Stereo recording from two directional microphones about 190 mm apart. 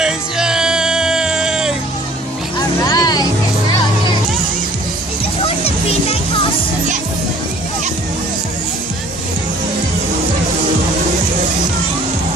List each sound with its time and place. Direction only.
0.0 s music: 5° right (ahead or behind)
2.9 s music: 20° left (ahead or behind)